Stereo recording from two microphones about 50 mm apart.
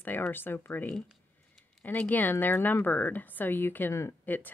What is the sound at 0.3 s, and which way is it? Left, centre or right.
Speech, left.